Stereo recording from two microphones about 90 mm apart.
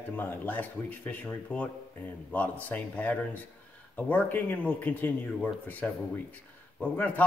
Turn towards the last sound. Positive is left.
turn(degrees=20)  # may be behind; listen again after turning